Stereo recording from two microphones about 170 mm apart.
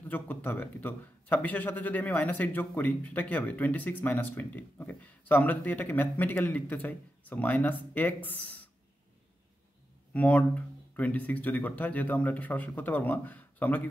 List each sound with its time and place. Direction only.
0.1 s a man's voice: 10° left (ahead or behind)
10.1 s a man's voice: 10° left (ahead or behind)